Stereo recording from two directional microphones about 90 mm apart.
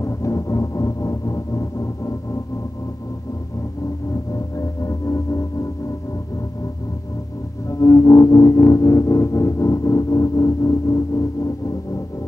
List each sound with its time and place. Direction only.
0.0 s music: 35° left (ahead or behind)
4.3 s music: 40° left (ahead or behind)
7.8 s music: 40° left (ahead or behind)